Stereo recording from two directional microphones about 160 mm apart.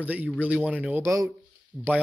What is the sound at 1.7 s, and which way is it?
Speech, centre (ahead or behind).